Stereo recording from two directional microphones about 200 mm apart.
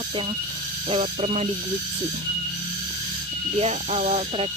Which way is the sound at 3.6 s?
35° right (ahead or behind).